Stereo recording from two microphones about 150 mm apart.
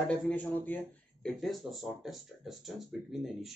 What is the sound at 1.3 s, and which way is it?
Speech, centre (ahead or behind).